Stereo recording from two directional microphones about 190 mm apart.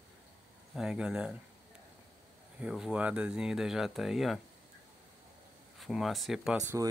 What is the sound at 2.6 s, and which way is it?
Speech, 5° right (ahead or behind).